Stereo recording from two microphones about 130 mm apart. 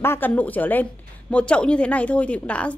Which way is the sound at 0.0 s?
20° left (ahead or behind).